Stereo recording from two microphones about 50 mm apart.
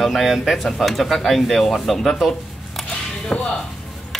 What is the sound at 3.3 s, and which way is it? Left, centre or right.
Speech, left.